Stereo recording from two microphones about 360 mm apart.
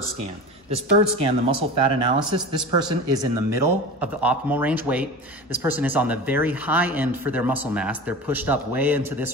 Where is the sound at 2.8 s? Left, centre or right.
Centre.